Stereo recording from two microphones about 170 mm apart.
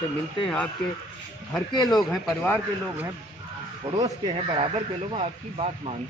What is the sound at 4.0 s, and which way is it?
Speech, 25° right (ahead or behind).